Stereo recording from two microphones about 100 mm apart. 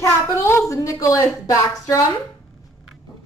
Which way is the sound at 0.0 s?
25° left (ahead or behind).